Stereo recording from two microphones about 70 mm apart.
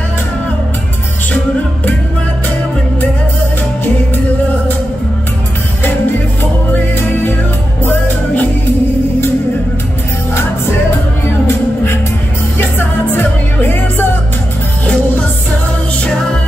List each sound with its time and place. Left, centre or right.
6.7 s music: left
11.4 s music: left